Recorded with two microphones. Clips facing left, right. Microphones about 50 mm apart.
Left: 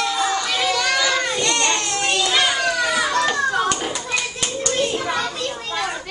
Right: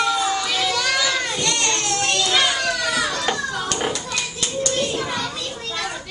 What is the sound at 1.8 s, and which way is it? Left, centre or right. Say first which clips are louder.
Children playing: left 1 dB; centre.